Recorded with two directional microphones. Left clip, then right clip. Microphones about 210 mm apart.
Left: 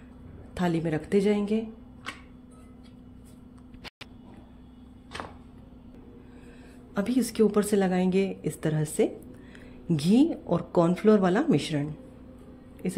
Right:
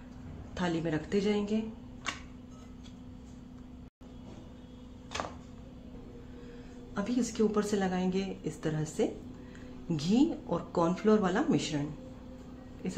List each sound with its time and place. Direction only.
0.6 s a woman's voice: 30° left (ahead or behind)
7.0 s a woman's voice: 35° left (ahead or behind)